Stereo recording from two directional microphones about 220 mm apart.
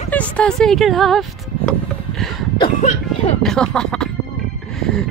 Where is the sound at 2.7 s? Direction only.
30° left (ahead or behind).